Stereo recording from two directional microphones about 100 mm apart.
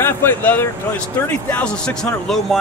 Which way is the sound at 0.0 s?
20° left (ahead or behind).